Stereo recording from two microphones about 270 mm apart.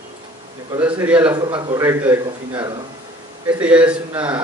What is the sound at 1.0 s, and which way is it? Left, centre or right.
A man's voice, centre.